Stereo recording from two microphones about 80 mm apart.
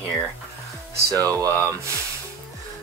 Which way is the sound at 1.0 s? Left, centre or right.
Right.